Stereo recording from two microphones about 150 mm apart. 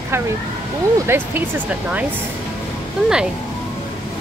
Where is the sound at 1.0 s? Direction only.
15° right (ahead or behind).